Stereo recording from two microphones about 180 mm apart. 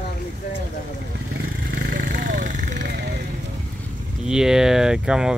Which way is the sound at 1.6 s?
55° right (ahead or behind).